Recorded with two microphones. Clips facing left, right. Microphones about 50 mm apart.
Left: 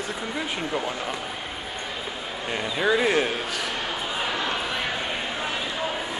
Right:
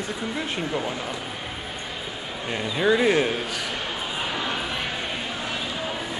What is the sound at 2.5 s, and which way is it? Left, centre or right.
A man's voice, centre.